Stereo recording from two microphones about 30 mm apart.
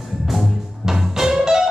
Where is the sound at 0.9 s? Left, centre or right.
Centre.